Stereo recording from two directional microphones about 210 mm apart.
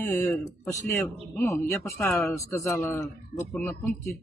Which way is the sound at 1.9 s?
Centre (ahead or behind).